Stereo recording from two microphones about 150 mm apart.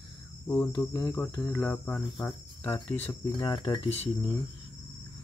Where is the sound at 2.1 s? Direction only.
10° left (ahead or behind).